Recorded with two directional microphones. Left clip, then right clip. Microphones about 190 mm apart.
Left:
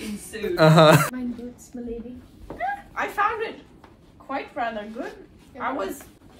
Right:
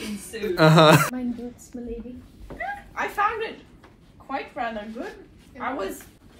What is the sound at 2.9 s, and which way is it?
A woman's voice, 10° left (ahead or behind).